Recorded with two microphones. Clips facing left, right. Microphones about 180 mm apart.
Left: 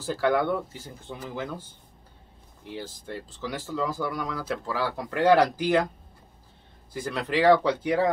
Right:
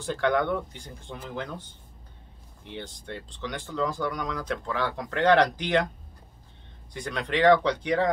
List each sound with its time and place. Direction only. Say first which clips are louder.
0.0 s speech: left 1 dB; 5° left (ahead or behind)
6.9 s speech: left 1 dB; 5° left (ahead or behind)